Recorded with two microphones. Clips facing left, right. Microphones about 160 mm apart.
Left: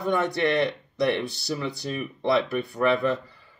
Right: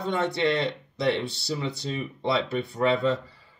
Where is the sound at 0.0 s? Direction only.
25° right (ahead or behind).